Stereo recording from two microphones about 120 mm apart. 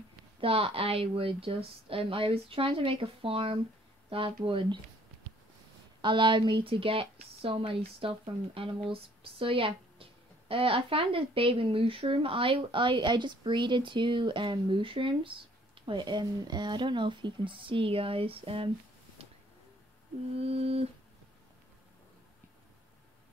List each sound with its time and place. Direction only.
0.4 s speech: 50° right (ahead or behind)
5.9 s speech: 40° right (ahead or behind)
19.2 s a sound: 55° right (ahead or behind)